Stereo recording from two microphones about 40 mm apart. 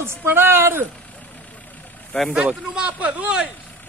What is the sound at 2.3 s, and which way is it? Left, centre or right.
Speech, right.